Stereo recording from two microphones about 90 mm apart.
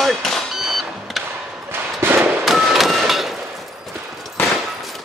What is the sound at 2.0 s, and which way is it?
Fireworks, 25° right (ahead or behind).